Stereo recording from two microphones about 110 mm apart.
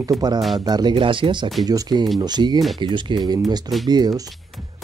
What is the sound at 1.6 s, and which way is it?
Speech, 35° right (ahead or behind).